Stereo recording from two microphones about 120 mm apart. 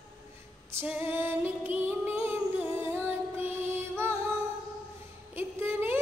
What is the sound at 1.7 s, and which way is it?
Music, 15° right (ahead or behind).